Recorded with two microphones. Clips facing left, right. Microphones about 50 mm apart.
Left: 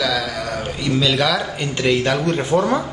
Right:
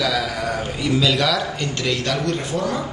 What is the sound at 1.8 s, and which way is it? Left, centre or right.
Speech, left.